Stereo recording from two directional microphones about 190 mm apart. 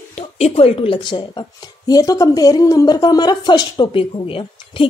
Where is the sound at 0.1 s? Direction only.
35° left (ahead or behind).